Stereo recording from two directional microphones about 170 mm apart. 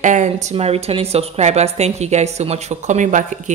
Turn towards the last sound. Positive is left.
turn(degrees=-45)  # may be behind; listen again after turning